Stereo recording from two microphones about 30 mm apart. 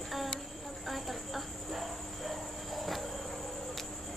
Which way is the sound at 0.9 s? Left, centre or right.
Centre.